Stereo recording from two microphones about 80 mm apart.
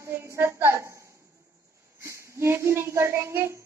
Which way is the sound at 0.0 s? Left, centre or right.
Right.